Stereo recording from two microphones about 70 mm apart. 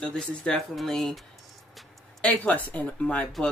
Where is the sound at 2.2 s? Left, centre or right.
Left.